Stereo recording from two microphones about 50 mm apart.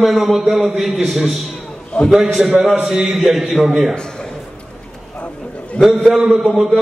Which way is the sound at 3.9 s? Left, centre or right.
Centre.